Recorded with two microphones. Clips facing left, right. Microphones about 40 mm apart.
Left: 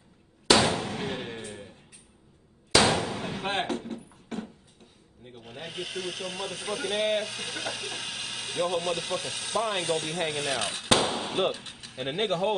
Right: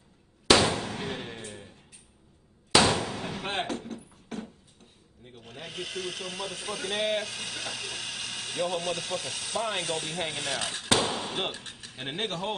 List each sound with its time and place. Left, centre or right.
0.7 s gunshot: left
0.9 s thump: left
2.8 s a sound: left
3.4 s speech: centre
3.8 s beatboxing: centre
5.2 s speech: centre